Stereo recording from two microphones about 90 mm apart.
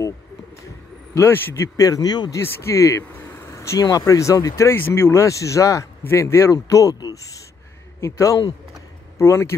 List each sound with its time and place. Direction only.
1.1 s speech: 25° left (ahead or behind); by 2.3 s 50° left (ahead or behind)
2.3 s speech: 30° left (ahead or behind)
4.6 s speech: 25° left (ahead or behind)